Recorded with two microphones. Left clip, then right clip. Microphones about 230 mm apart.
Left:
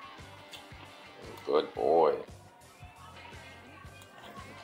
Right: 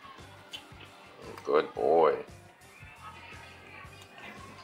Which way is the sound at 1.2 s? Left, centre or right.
Centre.